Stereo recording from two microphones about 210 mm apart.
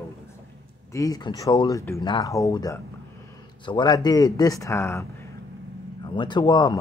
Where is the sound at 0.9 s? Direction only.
15° left (ahead or behind).